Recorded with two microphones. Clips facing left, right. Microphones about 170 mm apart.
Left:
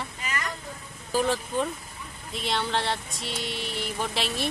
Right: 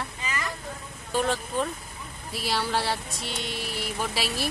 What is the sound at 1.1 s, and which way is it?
Speech, centre (ahead or behind).